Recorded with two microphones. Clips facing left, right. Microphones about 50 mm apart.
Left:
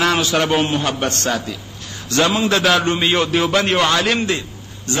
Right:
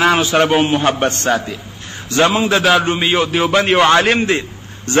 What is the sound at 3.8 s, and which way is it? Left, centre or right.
Speech, right.